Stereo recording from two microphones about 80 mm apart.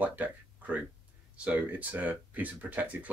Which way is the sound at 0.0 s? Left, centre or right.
Centre.